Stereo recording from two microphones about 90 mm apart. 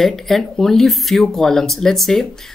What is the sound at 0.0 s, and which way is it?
Speech, 5° left (ahead or behind).